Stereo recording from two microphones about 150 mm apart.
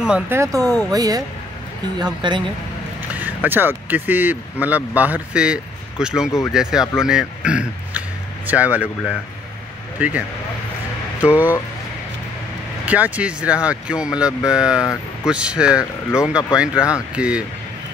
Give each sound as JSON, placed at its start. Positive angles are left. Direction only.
{"t": 0.0, "sound": "speech", "side_deg": -5}
{"t": 0.4, "sound": "speech", "side_deg": -20}
{"t": 3.4, "sound": "a man's voice", "side_deg": -15}
{"t": 9.9, "sound": "speech", "side_deg": -10}
{"t": 11.2, "sound": "speech", "side_deg": -10}
{"t": 12.8, "sound": "a man's voice", "side_deg": -10}